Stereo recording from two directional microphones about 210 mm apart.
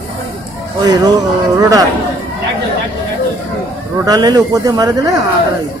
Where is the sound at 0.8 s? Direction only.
20° right (ahead or behind).